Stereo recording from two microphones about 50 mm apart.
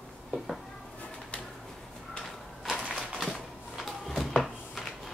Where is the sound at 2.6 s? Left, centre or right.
Centre.